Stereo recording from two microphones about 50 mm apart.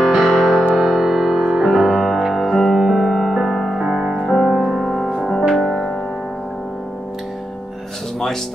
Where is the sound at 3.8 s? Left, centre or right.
Centre.